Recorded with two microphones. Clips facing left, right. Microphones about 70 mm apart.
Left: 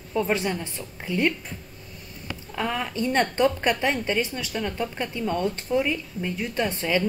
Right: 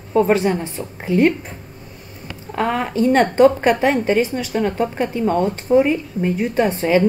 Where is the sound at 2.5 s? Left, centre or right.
Right.